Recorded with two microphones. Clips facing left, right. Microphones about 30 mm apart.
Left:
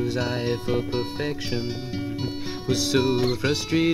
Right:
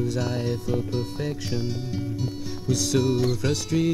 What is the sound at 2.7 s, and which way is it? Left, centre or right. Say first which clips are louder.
Music: left 1 dB; left.